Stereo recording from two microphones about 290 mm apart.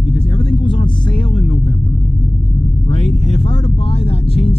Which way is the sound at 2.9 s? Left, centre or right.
Left.